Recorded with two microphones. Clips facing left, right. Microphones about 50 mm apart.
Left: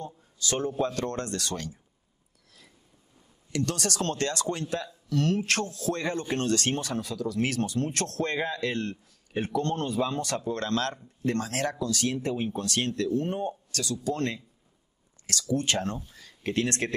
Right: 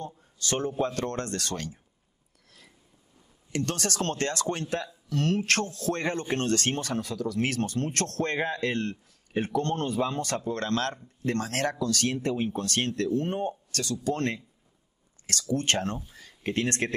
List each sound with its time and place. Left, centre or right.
0.2 s a man's voice: right
0.7 s speech: right
1.1 s speech: right
3.5 s speech: right